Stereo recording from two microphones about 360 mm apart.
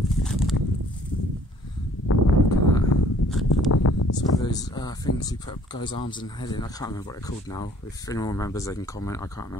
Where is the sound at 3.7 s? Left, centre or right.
Left.